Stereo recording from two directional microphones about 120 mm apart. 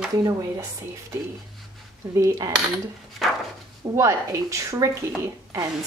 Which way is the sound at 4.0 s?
25° right (ahead or behind).